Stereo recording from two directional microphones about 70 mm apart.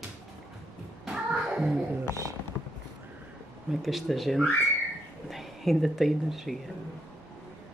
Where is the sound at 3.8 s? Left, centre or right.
Centre.